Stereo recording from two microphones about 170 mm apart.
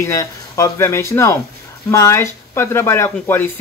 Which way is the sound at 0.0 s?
20° left (ahead or behind).